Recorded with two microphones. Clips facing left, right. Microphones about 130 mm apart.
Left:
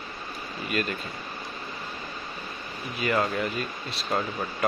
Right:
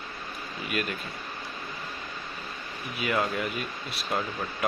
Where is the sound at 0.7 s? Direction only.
5° right (ahead or behind).